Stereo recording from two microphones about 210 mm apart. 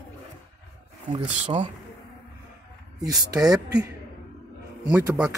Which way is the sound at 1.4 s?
30° right (ahead or behind).